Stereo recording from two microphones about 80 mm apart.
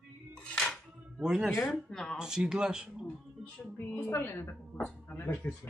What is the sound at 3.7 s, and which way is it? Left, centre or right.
A woman's voice, left.